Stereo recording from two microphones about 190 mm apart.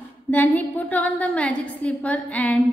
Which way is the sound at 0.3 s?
10° left (ahead or behind).